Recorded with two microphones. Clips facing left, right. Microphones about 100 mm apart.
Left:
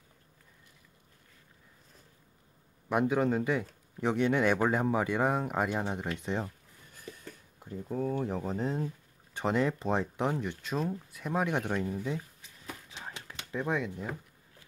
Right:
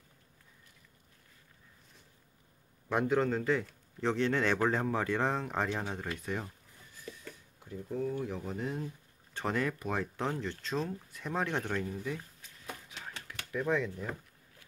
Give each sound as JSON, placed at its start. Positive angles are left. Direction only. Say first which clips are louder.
{"t": 2.9, "sound": "speech", "louder": "left 2 dB", "side_deg": 15}
{"t": 5.9, "sound": "speech", "louder": "left 3 dB", "side_deg": 20}
{"t": 7.9, "sound": "speech", "louder": "left 3 dB", "side_deg": 50}
{"t": 9.3, "sound": "speech", "louder": "left 4 dB", "side_deg": 20}
{"t": 12.9, "sound": "typewriter", "louder": "left 1 dB", "side_deg": 25}